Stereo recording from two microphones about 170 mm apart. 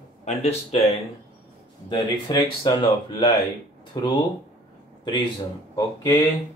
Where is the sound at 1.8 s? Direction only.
25° left (ahead or behind).